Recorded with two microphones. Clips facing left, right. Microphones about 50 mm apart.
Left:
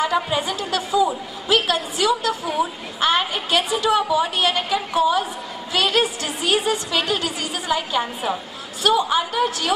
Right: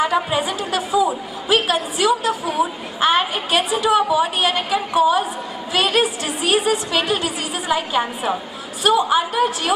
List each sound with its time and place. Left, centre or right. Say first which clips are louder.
0.0 s a woman's voice: right 2 dB; centre